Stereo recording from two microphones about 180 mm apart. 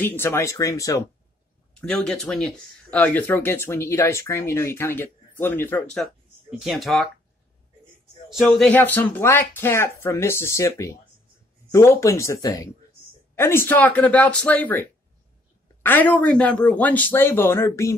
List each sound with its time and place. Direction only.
0.0 s speech: 10° left (ahead or behind)
1.8 s speech: 5° left (ahead or behind)
6.6 s speech: centre (ahead or behind)
8.3 s speech: centre (ahead or behind); by 17.9 s 15° left (ahead or behind)